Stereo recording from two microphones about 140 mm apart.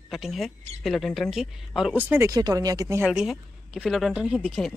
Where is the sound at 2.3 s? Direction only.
25° right (ahead or behind).